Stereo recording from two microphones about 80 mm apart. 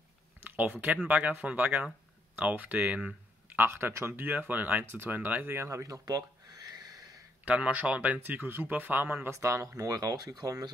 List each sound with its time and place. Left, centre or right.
0.4 s speech: right
3.5 s speech: right
4.3 s speech: right
7.4 s speech: centre
9.3 s speech: right